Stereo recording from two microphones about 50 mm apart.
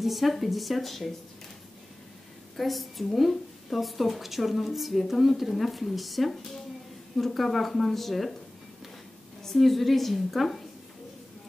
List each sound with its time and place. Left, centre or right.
0.0 s a woman's voice: centre
2.5 s a woman's voice: centre
9.4 s a woman's voice: centre